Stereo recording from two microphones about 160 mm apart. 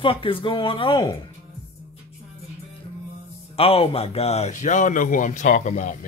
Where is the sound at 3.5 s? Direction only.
35° left (ahead or behind).